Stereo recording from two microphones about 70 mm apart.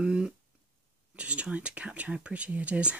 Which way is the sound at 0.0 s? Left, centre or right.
Centre.